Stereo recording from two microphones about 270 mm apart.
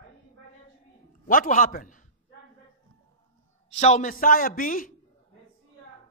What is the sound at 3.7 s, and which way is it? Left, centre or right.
Speech, left.